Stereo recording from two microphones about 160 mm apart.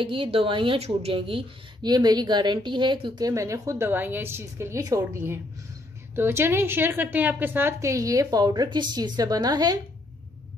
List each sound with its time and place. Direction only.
0.0 s speech: 35° right (ahead or behind)